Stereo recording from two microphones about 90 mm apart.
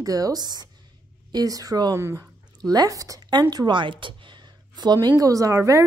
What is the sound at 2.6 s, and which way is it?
A woman's voice, 45° right (ahead or behind).